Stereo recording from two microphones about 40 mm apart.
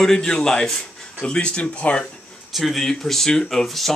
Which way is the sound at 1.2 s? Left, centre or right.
Left.